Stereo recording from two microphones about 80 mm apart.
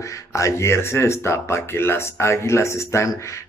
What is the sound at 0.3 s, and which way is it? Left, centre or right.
Speech, left.